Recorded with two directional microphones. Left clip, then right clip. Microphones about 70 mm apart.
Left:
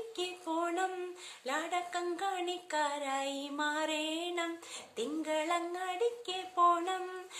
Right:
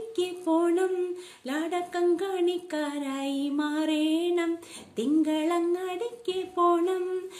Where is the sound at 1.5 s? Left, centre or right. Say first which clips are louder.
Right 5 dB; right.